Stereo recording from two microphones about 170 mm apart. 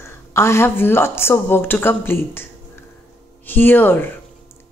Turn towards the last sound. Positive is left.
turn(degrees=10)  # may be behind; listen again after turning